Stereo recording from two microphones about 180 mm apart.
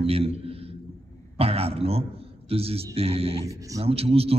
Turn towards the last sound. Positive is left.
turn(degrees=-35)  # may be behind; listen again after turning